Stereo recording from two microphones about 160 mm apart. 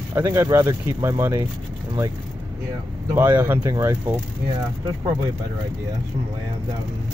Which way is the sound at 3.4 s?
15° right (ahead or behind).